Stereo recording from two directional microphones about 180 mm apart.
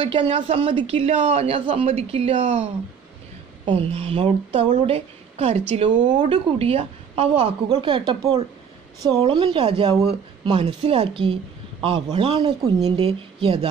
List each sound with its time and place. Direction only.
0.0 s a woman's voice: 30° right (ahead or behind)